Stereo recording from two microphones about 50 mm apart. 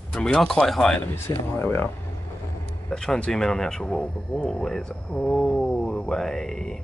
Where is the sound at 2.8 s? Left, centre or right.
Centre.